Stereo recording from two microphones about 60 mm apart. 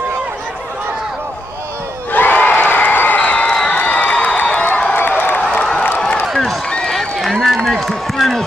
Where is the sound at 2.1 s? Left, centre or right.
Left.